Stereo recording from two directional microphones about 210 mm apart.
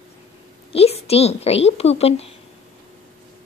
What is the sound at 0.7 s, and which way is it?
Speech, 30° left (ahead or behind).